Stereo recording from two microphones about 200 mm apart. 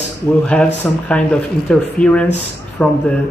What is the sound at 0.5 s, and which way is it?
Speech, 5° left (ahead or behind).